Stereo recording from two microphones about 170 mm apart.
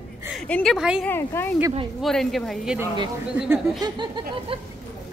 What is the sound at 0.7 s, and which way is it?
Speech, 5° right (ahead or behind).